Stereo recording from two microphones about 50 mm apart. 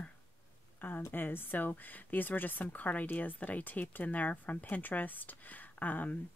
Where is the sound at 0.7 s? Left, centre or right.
Left.